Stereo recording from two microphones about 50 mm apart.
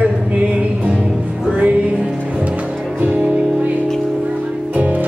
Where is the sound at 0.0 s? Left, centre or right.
Right.